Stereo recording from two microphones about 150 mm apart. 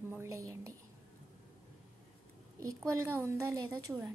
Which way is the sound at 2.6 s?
20° right (ahead or behind).